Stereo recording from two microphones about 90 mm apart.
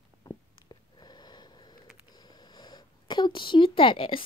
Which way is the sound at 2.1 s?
50° left (ahead or behind).